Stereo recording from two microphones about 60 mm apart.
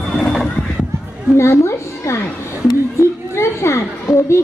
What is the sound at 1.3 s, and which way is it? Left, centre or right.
Speech, left.